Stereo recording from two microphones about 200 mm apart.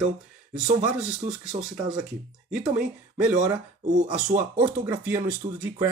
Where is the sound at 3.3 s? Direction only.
35° right (ahead or behind).